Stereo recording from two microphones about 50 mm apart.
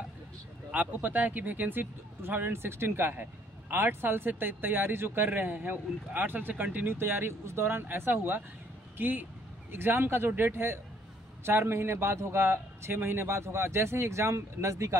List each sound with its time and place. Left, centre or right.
0.7 s a man's voice: right
6.9 s a man's voice: right